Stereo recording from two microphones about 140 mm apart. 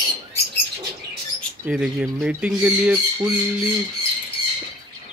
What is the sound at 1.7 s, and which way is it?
Speech, 5° right (ahead or behind).